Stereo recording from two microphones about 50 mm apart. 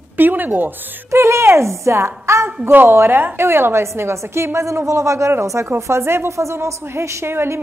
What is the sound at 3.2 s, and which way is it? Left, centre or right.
A woman's voice, right.